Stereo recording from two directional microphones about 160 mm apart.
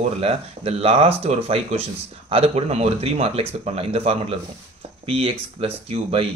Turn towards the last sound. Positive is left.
turn(degrees=-35)  # may be behind; listen again after turning